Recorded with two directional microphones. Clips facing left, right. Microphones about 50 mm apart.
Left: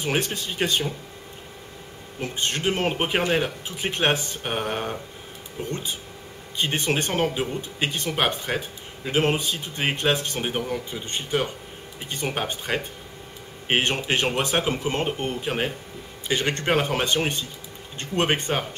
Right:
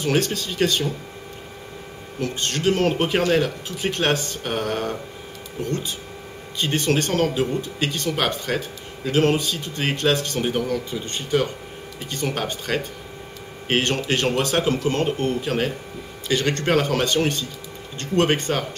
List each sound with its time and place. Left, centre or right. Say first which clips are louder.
0.0 s speech: right 4 dB; centre
2.1 s speech: right 2 dB; centre